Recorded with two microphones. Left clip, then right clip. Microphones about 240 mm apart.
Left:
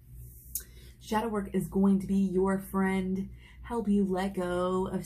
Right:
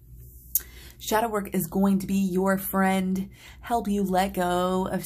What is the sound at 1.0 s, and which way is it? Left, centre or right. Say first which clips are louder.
Speech: right 7 dB; right.